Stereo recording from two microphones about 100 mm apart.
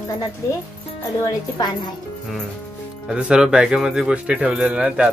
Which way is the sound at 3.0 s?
10° right (ahead or behind).